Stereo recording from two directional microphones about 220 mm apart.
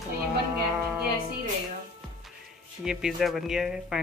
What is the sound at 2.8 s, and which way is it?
Speech, 5° right (ahead or behind).